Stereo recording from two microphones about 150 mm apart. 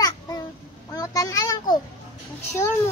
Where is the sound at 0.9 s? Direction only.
25° left (ahead or behind).